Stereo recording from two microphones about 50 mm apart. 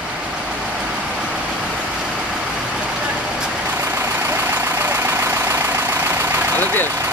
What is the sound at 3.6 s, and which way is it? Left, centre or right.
Vehicle, right.